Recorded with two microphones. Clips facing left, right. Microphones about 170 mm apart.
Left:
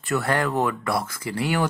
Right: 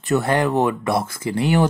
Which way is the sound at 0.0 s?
20° right (ahead or behind).